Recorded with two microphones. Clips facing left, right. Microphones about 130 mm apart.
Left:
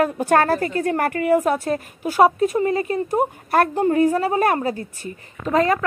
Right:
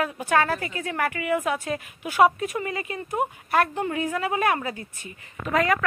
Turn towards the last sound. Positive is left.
turn(degrees=30)  # may be behind; listen again after turning